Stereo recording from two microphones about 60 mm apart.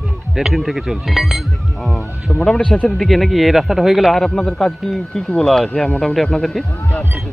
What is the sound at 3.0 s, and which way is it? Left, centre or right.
A man's voice, centre.